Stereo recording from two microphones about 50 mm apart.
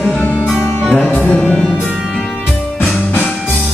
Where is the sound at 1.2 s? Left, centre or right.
Left.